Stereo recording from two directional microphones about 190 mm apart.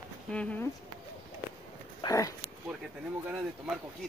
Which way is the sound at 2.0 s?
20° left (ahead or behind).